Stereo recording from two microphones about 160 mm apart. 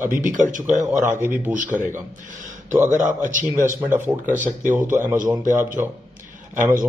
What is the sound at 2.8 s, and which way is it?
Speech, 50° right (ahead or behind).